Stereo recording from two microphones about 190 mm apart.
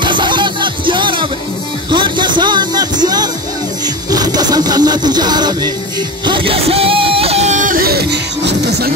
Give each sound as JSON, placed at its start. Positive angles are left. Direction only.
{"t": 0.0, "sound": "music", "side_deg": -25}